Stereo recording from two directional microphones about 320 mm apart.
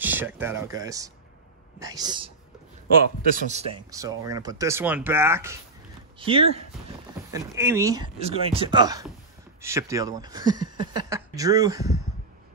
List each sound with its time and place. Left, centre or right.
0.0 s speech: centre
3.4 s speech: centre